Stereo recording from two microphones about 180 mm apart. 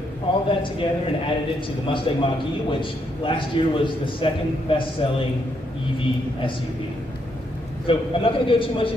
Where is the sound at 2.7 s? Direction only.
30° left (ahead or behind).